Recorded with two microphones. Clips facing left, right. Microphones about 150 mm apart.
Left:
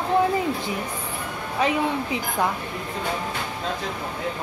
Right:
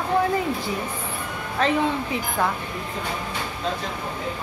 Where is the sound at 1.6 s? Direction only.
15° left (ahead or behind).